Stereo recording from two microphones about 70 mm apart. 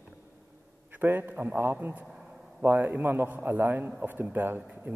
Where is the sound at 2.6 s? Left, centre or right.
Right.